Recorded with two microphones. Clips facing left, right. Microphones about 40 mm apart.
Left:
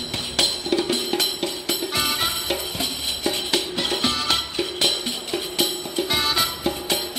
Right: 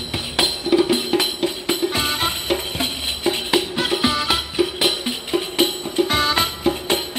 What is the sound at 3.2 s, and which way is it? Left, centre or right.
Music, right.